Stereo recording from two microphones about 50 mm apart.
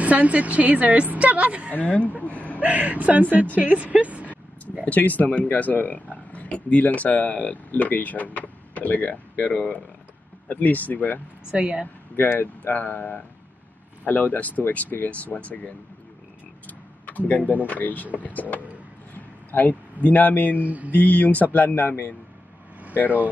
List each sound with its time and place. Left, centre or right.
0.0 s a woman's voice: right
1.8 s speech: left
2.6 s a woman's voice: right
4.8 s speech: left
11.5 s a woman's voice: right
12.2 s speech: left
17.0 s speech: left
19.1 s a sound: left
20.5 s speech: right
20.9 s speech: left
21.6 s a man's voice: left
23.0 s speech: right